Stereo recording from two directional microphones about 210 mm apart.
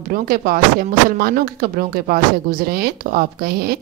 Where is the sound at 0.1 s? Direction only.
45° right (ahead or behind).